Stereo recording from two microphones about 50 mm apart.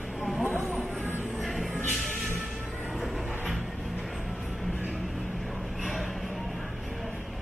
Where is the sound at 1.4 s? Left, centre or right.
Centre.